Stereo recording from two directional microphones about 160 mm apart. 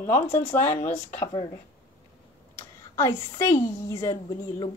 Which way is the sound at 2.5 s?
15° left (ahead or behind).